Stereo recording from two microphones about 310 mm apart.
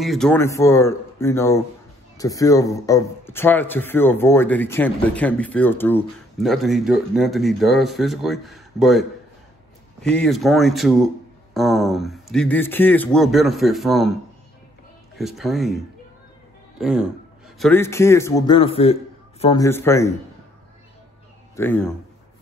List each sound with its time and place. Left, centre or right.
0.0 s a man's voice: centre
10.0 s a man's voice: centre
15.1 s a man's voice: centre
21.5 s a man's voice: centre